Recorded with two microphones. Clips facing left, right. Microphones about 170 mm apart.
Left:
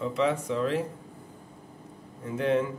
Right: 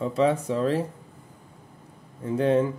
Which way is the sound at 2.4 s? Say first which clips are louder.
Right 4 dB; 30° right (ahead or behind).